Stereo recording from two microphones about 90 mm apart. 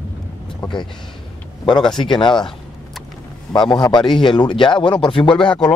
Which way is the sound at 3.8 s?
55° left (ahead or behind).